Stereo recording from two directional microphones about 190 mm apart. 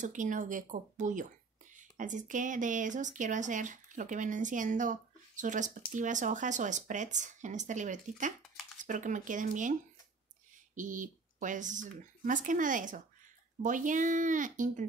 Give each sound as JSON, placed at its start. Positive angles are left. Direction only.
{"t": 0.0, "sound": "speech", "side_deg": -40}